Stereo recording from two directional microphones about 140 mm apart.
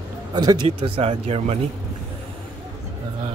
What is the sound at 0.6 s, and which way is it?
Speech, 45° right (ahead or behind).